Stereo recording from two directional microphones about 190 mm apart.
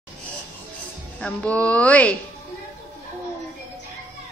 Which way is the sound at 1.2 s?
5° left (ahead or behind).